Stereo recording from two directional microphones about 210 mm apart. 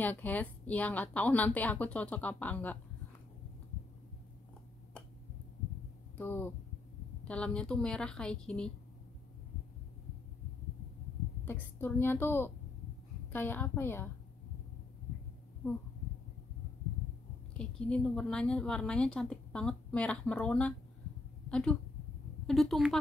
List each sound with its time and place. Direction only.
0.0 s speech: 10° left (ahead or behind)
6.1 s a woman's voice: 10° left (ahead or behind)
11.4 s speech: 10° left (ahead or behind)
17.6 s a woman's voice: 5° left (ahead or behind)